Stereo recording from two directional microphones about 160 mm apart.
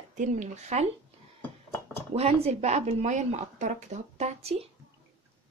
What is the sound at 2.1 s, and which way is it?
A woman's voice, 40° right (ahead or behind).